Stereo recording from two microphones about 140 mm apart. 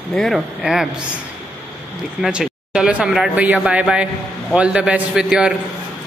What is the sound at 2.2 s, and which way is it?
Speech, 5° right (ahead or behind).